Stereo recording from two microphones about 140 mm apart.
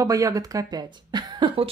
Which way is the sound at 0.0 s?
25° right (ahead or behind).